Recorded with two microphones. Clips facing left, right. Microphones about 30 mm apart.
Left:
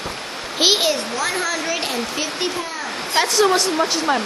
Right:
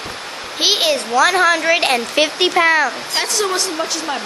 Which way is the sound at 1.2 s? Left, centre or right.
Right.